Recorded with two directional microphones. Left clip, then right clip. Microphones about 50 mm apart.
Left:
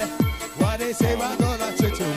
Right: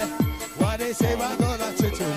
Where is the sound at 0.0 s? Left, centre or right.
Right.